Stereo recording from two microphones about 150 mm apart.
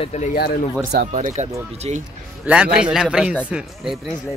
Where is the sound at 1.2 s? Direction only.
55° right (ahead or behind).